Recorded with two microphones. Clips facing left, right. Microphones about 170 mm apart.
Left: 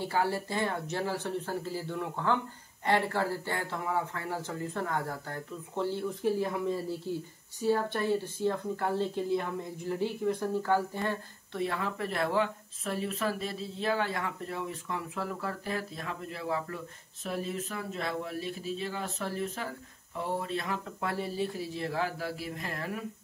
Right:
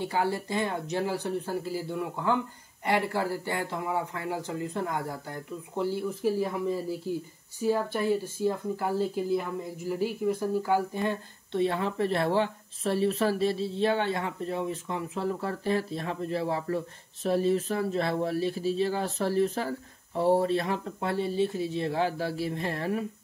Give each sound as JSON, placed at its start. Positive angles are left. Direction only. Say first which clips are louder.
{"t": 0.0, "sound": "speech", "louder": "right 2 dB", "side_deg": -20}